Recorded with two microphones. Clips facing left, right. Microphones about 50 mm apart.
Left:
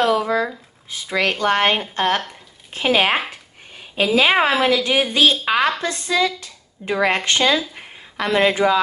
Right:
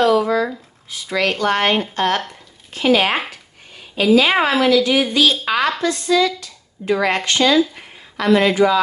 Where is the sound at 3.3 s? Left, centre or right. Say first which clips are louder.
Even; left.